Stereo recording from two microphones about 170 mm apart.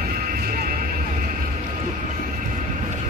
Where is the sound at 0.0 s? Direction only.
60° right (ahead or behind).